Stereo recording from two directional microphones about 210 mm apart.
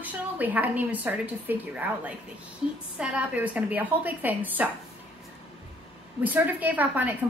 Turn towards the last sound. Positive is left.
turn(degrees=-10)  # may be behind; listen again after turning